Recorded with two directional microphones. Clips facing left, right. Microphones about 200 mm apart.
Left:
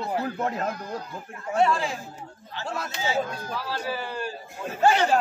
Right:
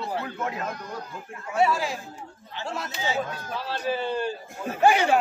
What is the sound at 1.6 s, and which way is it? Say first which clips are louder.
Speech: even; 5° right (ahead or behind).